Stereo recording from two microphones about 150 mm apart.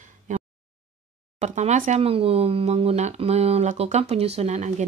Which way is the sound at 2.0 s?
40° right (ahead or behind).